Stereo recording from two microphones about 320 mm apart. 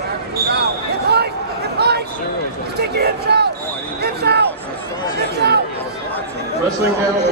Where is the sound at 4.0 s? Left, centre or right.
Right.